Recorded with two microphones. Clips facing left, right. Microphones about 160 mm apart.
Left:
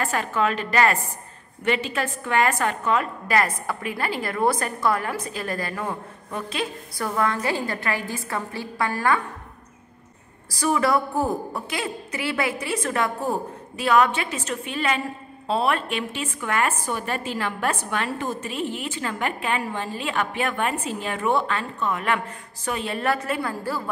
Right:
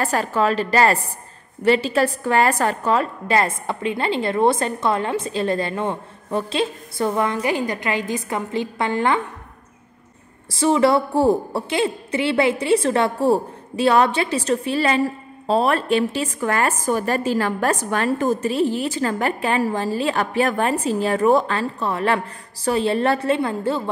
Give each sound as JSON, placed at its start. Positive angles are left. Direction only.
{"t": 0.0, "sound": "a woman's voice", "side_deg": -35}
{"t": 10.5, "sound": "a woman's voice", "side_deg": -25}